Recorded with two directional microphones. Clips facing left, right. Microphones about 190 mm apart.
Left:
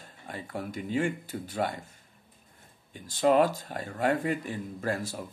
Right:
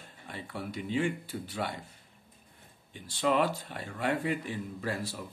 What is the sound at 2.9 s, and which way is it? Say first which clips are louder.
Speech: left 5 dB; 40° left (ahead or behind).